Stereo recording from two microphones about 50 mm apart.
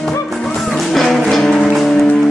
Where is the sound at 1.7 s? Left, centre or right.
Centre.